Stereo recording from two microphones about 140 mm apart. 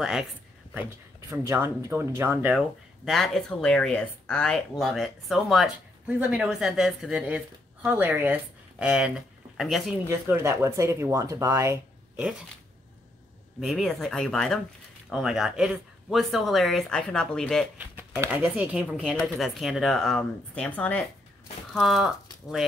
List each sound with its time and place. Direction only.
1.3 s speech: 20° right (ahead or behind)
3.1 s speech: centre (ahead or behind)
10.0 s speech: 20° right (ahead or behind)
13.6 s speech: centre (ahead or behind)
17.7 s speech: 10° right (ahead or behind); by 21.0 s 10° left (ahead or behind)
21.7 s speech: centre (ahead or behind)